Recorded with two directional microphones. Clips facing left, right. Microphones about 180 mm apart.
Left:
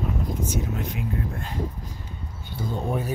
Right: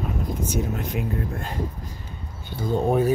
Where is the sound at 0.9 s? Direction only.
55° right (ahead or behind).